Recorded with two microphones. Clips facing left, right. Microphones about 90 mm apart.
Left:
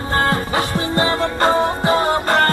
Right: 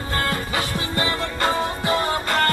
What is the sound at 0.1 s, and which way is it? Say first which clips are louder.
Music: left 6 dB; 35° left (ahead or behind).